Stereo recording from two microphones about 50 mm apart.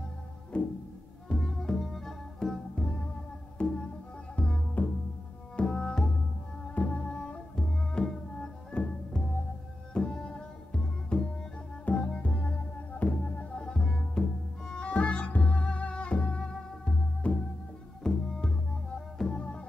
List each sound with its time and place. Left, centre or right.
0.5 s music: left
2.7 s music: centre
5.6 s music: centre
6.7 s music: left
13.6 s music: centre